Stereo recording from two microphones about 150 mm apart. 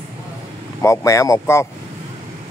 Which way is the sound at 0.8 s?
20° left (ahead or behind).